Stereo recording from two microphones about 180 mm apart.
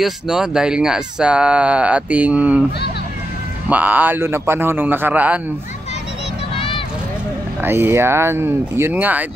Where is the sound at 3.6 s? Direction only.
10° right (ahead or behind).